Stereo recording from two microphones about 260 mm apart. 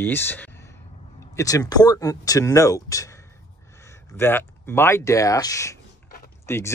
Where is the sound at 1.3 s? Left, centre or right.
Centre.